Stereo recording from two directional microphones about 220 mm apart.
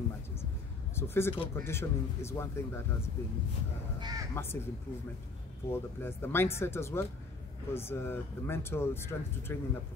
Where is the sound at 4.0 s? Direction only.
20° right (ahead or behind).